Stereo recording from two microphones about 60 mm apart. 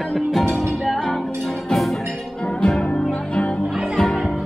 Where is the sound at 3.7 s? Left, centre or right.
Centre.